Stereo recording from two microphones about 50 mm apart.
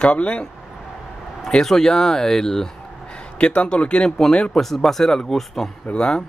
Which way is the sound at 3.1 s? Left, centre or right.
Left.